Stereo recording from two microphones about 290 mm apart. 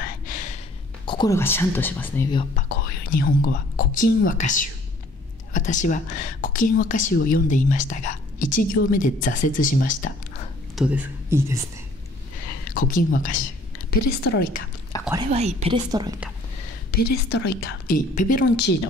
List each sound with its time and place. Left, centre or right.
1.0 s speech: centre
2.5 s speech: left
10.8 s speech: centre
12.7 s a woman's voice: left
15.2 s speech: right
16.9 s a woman's voice: left